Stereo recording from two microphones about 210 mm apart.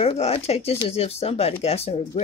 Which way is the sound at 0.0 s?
30° left (ahead or behind).